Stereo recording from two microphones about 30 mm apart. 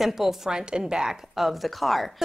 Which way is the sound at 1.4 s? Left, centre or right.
Centre.